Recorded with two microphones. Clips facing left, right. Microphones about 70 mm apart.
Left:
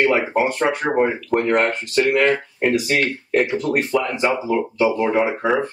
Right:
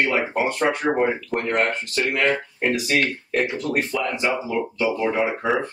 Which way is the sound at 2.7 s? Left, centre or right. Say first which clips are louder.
Left 2 dB; left.